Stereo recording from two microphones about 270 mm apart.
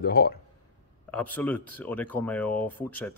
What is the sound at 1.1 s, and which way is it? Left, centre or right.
Speech, centre.